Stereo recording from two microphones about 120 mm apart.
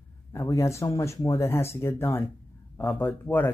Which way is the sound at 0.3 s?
25° left (ahead or behind).